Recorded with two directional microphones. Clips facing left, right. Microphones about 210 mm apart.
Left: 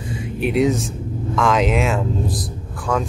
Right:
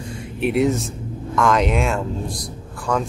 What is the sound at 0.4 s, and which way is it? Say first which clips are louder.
Speech: left 1 dB; centre (ahead or behind).